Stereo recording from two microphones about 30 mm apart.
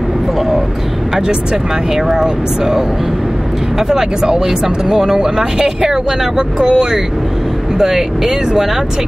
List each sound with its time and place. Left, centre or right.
2.0 s speech: centre
7.8 s speech: centre